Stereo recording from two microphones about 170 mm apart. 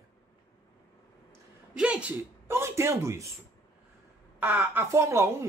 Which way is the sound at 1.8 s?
5° right (ahead or behind).